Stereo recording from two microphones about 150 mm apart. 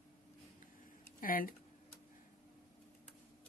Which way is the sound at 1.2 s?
70° left (ahead or behind).